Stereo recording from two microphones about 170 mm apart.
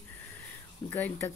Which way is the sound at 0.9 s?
10° left (ahead or behind).